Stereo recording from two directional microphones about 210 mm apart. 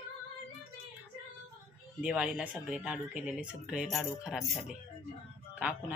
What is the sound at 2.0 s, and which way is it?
Speech, 5° right (ahead or behind).